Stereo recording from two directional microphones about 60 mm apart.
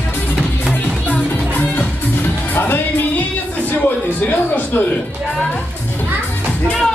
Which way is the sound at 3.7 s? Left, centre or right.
Left.